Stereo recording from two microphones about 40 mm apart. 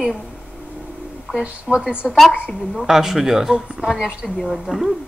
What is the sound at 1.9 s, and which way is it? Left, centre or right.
Speech, right.